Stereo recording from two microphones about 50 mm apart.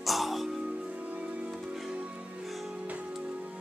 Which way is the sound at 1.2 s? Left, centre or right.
Centre.